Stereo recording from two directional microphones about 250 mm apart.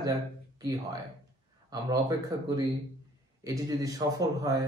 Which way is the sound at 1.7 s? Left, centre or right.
Centre.